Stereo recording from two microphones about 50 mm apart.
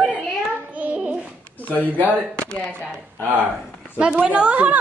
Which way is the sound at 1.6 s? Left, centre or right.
Left.